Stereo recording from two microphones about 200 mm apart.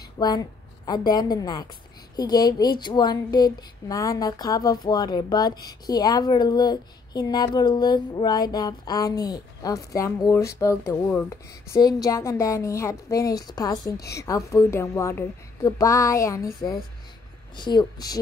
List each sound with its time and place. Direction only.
0.2 s speech: 20° left (ahead or behind)
17.6 s speech: 20° left (ahead or behind)